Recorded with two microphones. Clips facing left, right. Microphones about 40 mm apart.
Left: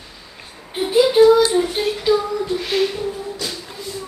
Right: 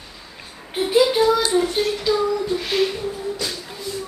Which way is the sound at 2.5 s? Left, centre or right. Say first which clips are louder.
Left 1 dB; centre.